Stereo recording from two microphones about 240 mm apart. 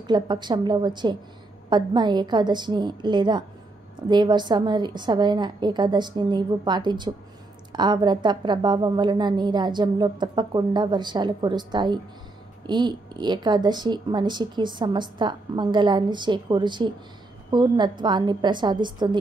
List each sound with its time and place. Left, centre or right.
0.0 s a woman's voice: centre